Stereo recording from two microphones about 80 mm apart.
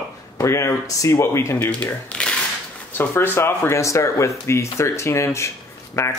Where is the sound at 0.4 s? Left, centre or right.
Left.